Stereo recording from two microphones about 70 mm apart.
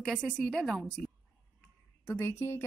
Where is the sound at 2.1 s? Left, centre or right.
Left.